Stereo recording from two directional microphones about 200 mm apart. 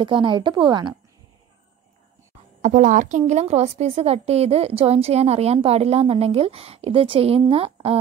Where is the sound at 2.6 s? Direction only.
40° right (ahead or behind).